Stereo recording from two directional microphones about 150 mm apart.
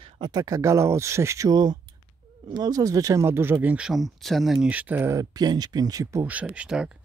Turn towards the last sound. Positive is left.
turn(degrees=-5)  # may be behind; listen again after turning